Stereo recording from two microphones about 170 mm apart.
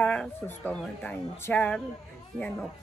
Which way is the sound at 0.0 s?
10° left (ahead or behind).